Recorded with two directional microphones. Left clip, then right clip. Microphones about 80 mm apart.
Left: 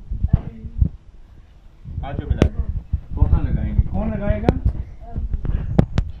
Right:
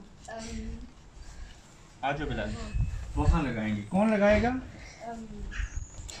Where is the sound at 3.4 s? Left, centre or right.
Right.